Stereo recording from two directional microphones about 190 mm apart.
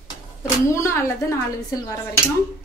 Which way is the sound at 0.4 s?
15° left (ahead or behind).